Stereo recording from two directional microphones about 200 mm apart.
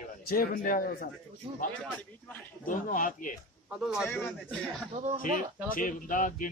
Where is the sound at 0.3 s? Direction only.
45° left (ahead or behind).